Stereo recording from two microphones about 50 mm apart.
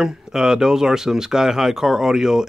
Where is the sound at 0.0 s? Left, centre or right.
Centre.